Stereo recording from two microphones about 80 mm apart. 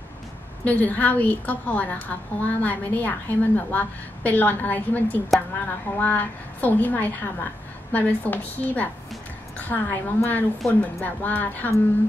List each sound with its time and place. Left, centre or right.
0.7 s a woman's voice: centre